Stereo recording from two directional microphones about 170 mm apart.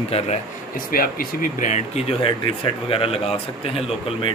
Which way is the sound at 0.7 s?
55° left (ahead or behind).